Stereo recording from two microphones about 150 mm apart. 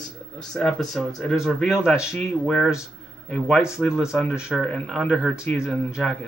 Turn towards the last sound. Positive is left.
turn(degrees=0)  # may be behind; listen again after turning